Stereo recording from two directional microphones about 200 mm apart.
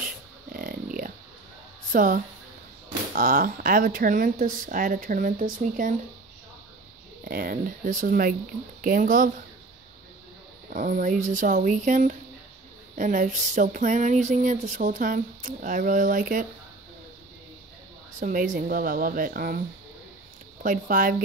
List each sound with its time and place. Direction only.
0.5 s a sound: 45° right (ahead or behind)
1.9 s speech: 40° right (ahead or behind)
7.2 s speech: 45° right (ahead or behind)
10.7 s speech: 40° right (ahead or behind)
18.2 s speech: 40° right (ahead or behind)
20.6 s speech: 40° right (ahead or behind)